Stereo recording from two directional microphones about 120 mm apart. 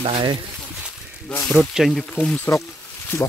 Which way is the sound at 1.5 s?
Centre (ahead or behind).